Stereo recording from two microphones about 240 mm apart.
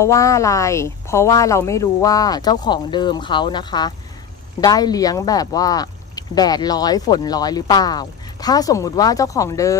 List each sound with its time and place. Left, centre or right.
0.0 s speech: centre